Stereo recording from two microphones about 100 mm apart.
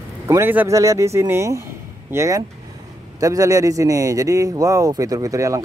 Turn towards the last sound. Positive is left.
turn(degrees=-35)  # may be behind; listen again after turning